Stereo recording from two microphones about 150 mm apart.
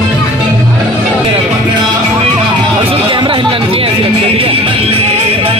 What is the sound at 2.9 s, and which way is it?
Music, 35° right (ahead or behind).